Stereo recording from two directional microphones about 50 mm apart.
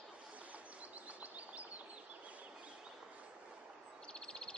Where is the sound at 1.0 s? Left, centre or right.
Right.